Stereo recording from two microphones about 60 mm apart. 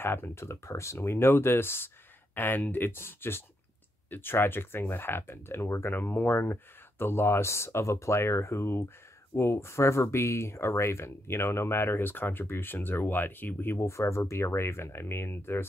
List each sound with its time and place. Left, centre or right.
0.0 s speech: left
13.8 s speech: left